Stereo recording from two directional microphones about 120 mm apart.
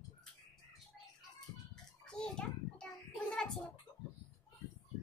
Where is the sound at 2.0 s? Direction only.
5° left (ahead or behind).